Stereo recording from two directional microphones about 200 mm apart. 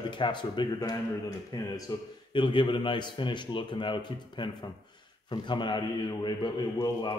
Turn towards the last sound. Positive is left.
turn(degrees=20)  # may be behind; listen again after turning